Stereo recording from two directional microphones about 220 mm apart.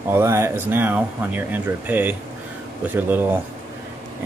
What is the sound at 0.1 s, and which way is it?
Speech, 10° right (ahead or behind).